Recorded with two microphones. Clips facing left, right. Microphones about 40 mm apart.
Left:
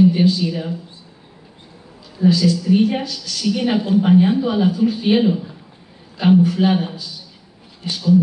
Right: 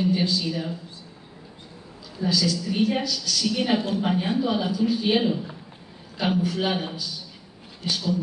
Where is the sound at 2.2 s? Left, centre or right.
Left.